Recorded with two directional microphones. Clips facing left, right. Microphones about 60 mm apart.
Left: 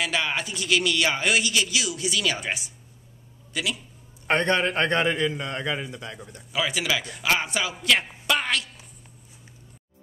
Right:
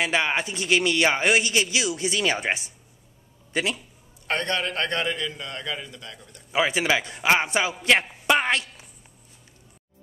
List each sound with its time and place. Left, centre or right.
0.0 s a man's voice: right
4.3 s a man's voice: left
6.5 s a man's voice: right
8.3 s a sound: right